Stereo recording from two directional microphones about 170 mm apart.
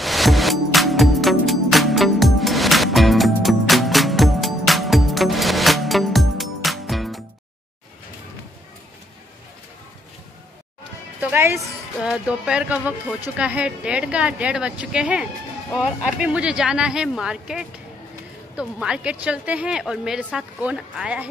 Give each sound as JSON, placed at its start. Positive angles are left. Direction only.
{"t": 0.0, "sound": "music", "side_deg": 0}
{"t": 11.1, "sound": "music", "side_deg": -10}
{"t": 12.0, "sound": "a woman's voice", "side_deg": -5}